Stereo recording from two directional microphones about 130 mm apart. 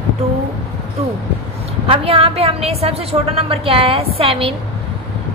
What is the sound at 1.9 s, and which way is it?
A woman's voice, 50° right (ahead or behind).